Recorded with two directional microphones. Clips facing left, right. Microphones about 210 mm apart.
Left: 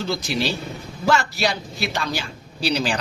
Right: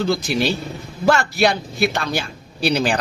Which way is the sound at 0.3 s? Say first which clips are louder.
Right 4 dB; 55° right (ahead or behind).